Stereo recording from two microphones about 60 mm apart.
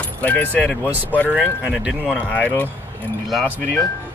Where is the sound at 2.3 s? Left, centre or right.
Left.